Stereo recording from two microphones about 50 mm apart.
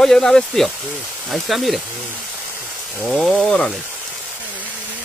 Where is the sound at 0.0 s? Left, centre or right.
Centre.